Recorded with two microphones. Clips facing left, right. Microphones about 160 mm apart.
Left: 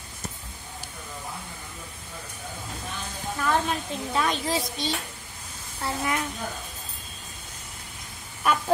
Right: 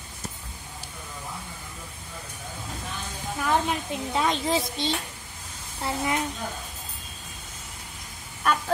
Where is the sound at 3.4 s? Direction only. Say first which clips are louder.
Right 1 dB; 15° right (ahead or behind).